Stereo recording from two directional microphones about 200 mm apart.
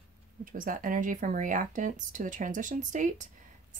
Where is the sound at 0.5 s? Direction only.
45° right (ahead or behind).